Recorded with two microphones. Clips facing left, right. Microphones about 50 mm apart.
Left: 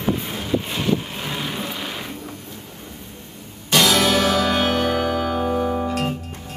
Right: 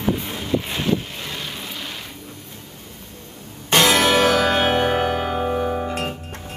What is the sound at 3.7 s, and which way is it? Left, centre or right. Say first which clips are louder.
Music: right 1 dB; right.